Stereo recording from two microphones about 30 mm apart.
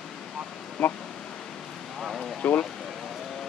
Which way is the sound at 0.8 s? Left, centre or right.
Left.